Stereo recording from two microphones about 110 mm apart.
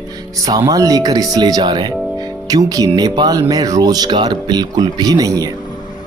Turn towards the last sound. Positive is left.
turn(degrees=-35)  # may be behind; listen again after turning